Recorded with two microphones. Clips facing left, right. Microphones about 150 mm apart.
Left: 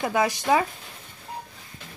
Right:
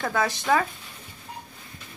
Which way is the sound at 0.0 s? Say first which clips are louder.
Left 2 dB; 15° left (ahead or behind).